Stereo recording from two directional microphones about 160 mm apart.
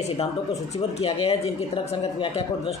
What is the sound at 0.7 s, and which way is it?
Speech, 40° left (ahead or behind).